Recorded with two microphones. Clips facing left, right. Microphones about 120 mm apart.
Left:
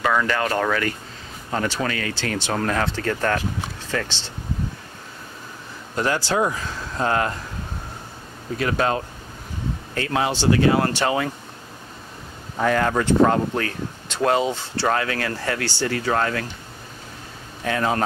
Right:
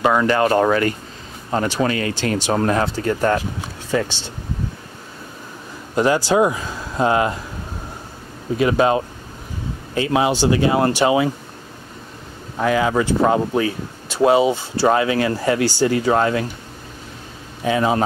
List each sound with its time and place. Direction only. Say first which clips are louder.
0.0 s speech: right 5 dB; 25° right (ahead or behind)
5.9 s speech: right 6 dB; 15° right (ahead or behind)
8.5 s speech: right 6 dB; 15° right (ahead or behind)
12.5 s speech: right 2 dB; 5° right (ahead or behind)
17.6 s speech: right 4 dB; 10° right (ahead or behind)